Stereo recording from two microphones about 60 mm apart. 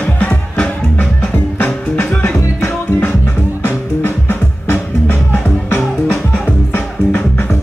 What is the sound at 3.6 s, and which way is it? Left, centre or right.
Music, left.